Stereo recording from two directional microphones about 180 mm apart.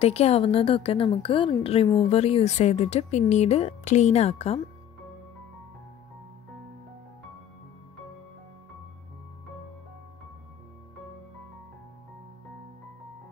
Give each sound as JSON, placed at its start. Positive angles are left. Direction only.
{"t": 0.0, "sound": "speech", "side_deg": 35}